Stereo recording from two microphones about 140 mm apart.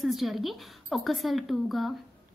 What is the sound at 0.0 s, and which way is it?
A woman's voice, centre (ahead or behind).